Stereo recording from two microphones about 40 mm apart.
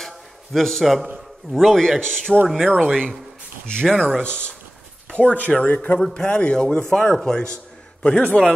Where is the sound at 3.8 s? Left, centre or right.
Centre.